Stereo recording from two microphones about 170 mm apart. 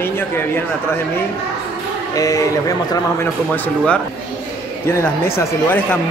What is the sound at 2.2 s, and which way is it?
Speech, 20° left (ahead or behind).